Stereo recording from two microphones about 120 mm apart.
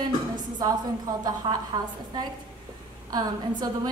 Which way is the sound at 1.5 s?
45° right (ahead or behind).